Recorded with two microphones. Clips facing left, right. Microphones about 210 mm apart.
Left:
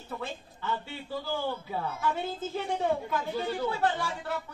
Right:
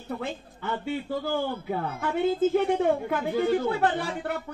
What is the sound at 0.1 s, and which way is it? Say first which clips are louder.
A man's voice: right 5 dB; 60° right (ahead or behind).